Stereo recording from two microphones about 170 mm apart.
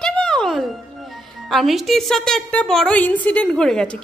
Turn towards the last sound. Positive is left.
turn(degrees=5)  # may be behind; listen again after turning